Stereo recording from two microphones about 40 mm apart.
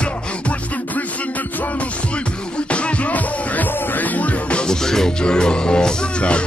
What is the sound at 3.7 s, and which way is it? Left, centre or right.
Music, left.